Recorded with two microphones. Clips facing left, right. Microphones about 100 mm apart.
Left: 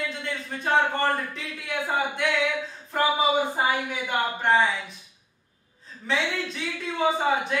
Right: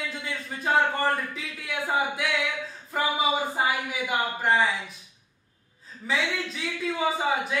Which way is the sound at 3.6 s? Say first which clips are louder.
Left 1 dB; 5° right (ahead or behind).